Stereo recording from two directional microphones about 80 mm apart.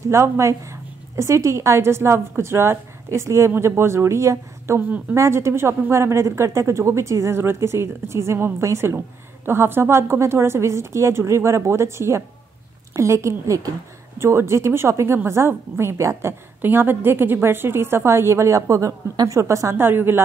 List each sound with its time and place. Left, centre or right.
0.1 s a woman's voice: right
19.7 s speech: right